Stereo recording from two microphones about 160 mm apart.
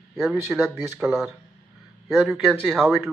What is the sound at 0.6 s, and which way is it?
Speech, 15° right (ahead or behind).